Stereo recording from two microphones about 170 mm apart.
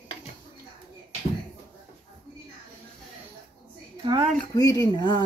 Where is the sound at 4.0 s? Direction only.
30° right (ahead or behind).